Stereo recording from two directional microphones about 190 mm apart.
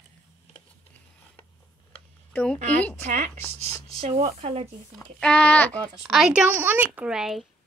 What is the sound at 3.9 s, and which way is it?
Speech, 30° right (ahead or behind).